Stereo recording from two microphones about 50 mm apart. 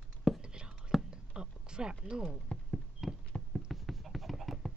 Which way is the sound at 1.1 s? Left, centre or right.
Centre.